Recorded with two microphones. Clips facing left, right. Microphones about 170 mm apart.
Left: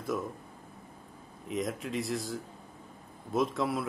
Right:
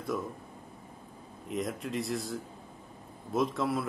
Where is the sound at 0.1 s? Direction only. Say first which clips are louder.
Left 1 dB; 5° left (ahead or behind).